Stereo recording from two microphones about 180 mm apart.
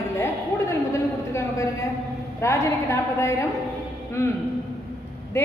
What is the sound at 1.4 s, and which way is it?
A woman's voice, 15° left (ahead or behind).